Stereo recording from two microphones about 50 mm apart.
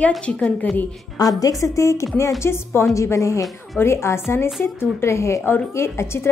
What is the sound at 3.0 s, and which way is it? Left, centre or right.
Speech, left.